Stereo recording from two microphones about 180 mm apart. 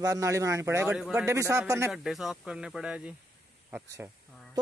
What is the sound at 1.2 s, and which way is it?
Speech, 15° right (ahead or behind).